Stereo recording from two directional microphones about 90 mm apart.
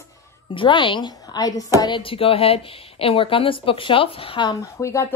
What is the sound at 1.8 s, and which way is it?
A woman's voice, 65° left (ahead or behind).